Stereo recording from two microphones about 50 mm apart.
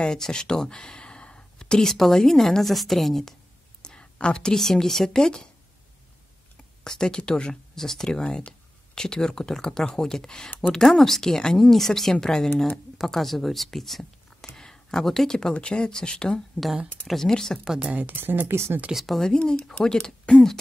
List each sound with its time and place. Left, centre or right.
0.0 s speech: centre
3.8 s speech: centre
6.8 s speech: centre
8.2 s speech: left
17.7 s speech: right
18.5 s speech: right
19.0 s speech: centre
19.3 s speech: centre